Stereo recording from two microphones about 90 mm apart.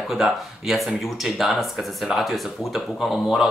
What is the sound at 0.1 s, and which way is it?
Speech, centre (ahead or behind).